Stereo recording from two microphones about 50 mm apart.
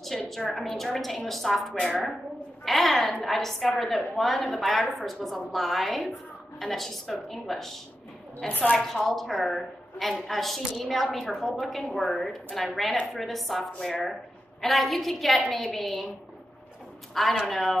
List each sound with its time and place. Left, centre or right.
0.3 s a woman's voice: centre
8.5 s a woman's voice: left
8.8 s a woman's voice: centre
17.1 s a woman's voice: centre